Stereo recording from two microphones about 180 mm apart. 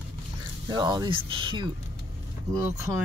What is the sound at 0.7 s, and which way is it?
Speech, 25° right (ahead or behind).